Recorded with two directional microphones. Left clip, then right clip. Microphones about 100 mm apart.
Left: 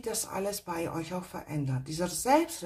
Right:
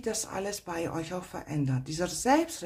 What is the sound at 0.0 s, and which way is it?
Speech, 25° right (ahead or behind).